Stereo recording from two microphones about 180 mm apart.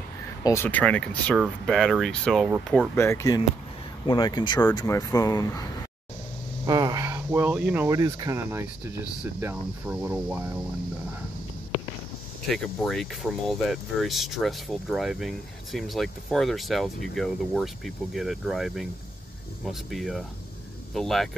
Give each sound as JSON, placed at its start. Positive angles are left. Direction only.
{"t": 0.4, "sound": "speech", "side_deg": 15}
{"t": 3.0, "sound": "speech", "side_deg": 15}
{"t": 6.6, "sound": "speech", "side_deg": -20}
{"t": 12.4, "sound": "speech", "side_deg": 0}